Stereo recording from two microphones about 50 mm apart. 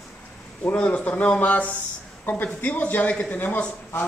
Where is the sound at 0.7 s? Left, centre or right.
Left.